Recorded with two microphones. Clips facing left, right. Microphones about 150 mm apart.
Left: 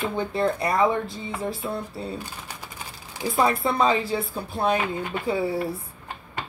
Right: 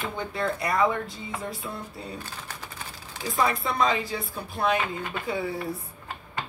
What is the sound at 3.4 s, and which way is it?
Speech, 30° left (ahead or behind).